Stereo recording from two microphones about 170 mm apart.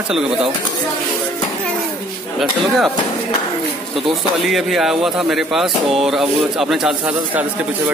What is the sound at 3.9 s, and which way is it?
Speech, centre (ahead or behind).